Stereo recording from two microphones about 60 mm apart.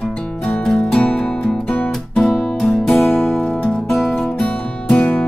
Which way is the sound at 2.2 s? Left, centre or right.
Centre.